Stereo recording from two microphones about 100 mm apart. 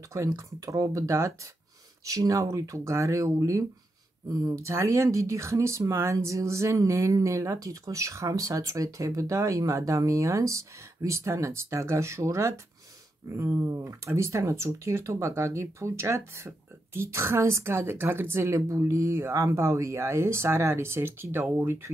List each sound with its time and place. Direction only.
0.1 s speech: 30° right (ahead or behind)